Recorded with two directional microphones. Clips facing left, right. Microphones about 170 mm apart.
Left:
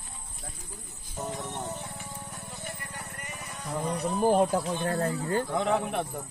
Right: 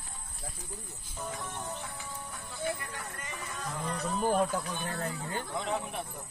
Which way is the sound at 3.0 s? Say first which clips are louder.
Even; 20° left (ahead or behind).